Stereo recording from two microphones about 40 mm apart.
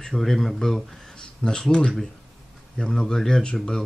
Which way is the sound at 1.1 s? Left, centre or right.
Centre.